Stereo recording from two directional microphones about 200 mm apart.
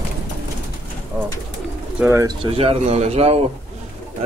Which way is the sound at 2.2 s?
30° right (ahead or behind).